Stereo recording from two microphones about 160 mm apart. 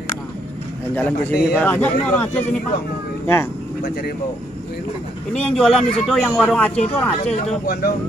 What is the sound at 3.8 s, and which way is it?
Speech, 65° left (ahead or behind).